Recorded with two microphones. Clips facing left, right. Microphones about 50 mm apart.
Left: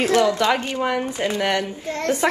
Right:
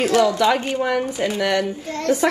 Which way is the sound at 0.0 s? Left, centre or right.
Left.